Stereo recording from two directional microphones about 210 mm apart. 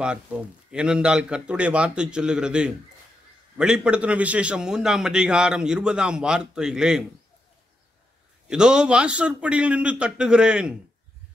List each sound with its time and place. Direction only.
0.0 s a man's voice: 5° right (ahead or behind)
8.5 s a man's voice: 5° right (ahead or behind)